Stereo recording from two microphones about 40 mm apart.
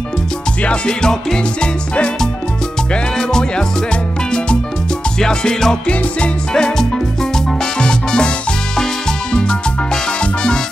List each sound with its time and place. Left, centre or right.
0.7 s music: left